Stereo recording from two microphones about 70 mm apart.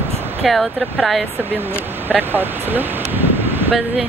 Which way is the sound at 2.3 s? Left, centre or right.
Right.